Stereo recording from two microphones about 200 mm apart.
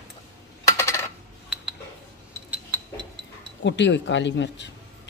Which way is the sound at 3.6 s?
65° left (ahead or behind).